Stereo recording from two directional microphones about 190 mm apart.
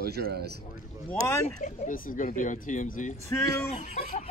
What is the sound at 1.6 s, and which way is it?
Speech, 45° left (ahead or behind).